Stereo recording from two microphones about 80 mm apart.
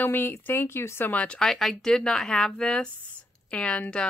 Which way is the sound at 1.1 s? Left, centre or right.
Centre.